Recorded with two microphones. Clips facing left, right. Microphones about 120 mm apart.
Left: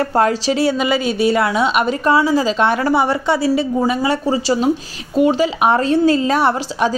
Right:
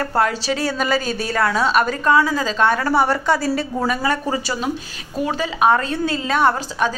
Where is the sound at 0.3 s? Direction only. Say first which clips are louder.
Left 6 dB; 25° left (ahead or behind).